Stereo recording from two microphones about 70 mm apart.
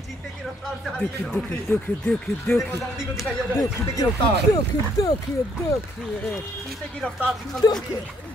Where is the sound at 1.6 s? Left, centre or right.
Left.